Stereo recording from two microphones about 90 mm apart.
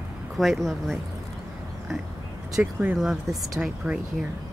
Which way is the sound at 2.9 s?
Centre (ahead or behind).